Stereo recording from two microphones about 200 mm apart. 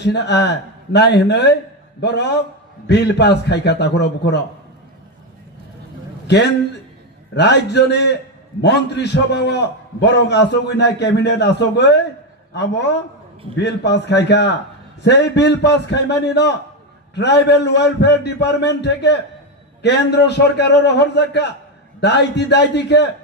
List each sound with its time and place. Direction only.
0.0 s a man's voice: 60° left (ahead or behind)
6.2 s a man's voice: 60° left (ahead or behind)